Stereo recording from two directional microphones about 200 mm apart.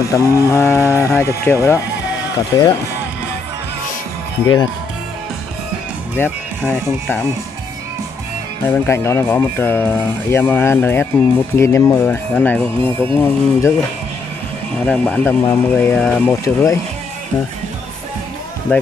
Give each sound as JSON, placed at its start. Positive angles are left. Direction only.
{"t": 0.0, "sound": "speech", "side_deg": 15}
{"t": 6.1, "sound": "speech", "side_deg": 10}
{"t": 8.8, "sound": "speech", "side_deg": 10}
{"t": 14.9, "sound": "speech", "side_deg": 5}
{"t": 18.7, "sound": "speech", "side_deg": 10}